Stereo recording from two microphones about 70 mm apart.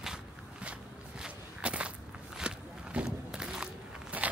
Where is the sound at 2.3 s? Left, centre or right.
Centre.